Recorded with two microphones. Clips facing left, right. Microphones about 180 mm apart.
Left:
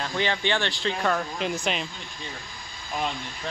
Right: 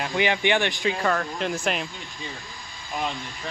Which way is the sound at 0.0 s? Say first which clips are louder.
Right 3 dB; 15° right (ahead or behind).